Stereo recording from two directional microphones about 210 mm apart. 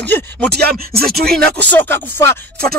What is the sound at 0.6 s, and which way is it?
Speech, 45° right (ahead or behind).